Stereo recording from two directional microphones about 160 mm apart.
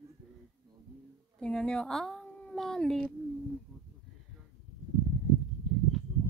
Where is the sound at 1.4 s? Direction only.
5° left (ahead or behind).